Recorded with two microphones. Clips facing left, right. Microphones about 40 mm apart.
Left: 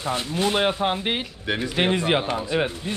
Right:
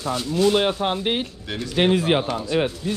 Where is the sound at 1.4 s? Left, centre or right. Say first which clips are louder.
Right 1 dB; left.